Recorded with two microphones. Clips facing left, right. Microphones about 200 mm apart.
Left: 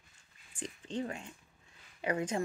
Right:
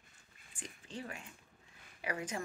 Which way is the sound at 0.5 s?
30° left (ahead or behind).